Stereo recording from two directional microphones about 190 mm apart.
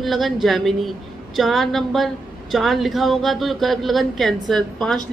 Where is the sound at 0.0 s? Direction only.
Centre (ahead or behind).